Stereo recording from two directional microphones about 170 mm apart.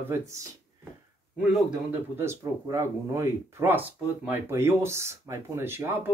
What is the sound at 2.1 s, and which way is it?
Speech, 15° right (ahead or behind).